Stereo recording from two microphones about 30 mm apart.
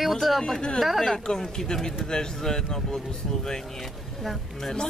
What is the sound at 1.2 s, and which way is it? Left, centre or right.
Speech, centre.